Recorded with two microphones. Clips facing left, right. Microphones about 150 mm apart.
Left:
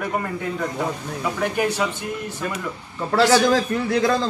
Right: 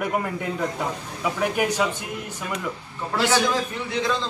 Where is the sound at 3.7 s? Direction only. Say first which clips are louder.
Left 6 dB; 70° left (ahead or behind).